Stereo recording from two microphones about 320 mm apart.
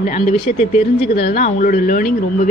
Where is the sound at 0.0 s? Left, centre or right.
Left.